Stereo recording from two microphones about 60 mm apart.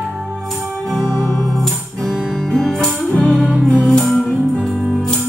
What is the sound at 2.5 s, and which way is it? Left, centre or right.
Music, centre.